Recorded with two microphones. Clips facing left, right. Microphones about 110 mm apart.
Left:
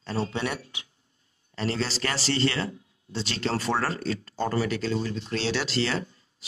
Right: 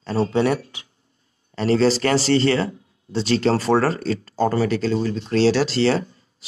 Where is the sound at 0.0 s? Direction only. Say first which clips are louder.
Right 9 dB; 40° right (ahead or behind).